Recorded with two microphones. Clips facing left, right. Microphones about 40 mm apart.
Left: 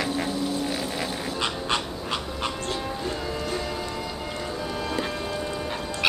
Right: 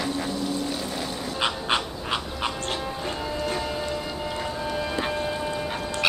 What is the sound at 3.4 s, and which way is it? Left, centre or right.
Music, centre.